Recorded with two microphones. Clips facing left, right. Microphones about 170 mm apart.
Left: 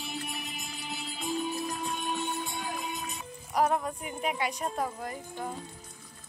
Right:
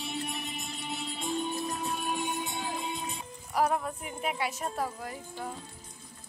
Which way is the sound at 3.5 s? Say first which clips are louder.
Left 1 dB; centre (ahead or behind).